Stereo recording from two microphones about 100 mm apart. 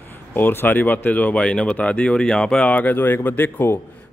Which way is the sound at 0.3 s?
20° left (ahead or behind).